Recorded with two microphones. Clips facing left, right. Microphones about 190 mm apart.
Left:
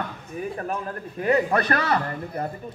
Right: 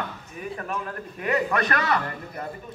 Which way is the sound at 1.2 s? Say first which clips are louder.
Left 3 dB; 35° left (ahead or behind).